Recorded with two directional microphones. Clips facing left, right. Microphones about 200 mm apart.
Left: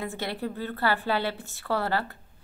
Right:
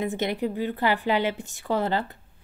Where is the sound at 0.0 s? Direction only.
20° right (ahead or behind).